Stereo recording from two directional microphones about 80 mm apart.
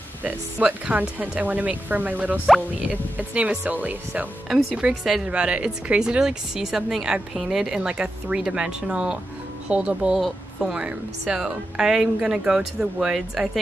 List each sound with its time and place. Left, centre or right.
0.2 s speech: centre
4.5 s speech: centre
10.1 s speech: centre